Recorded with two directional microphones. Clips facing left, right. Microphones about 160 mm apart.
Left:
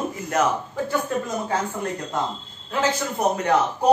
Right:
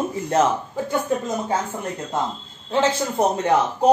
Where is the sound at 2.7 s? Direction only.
30° right (ahead or behind).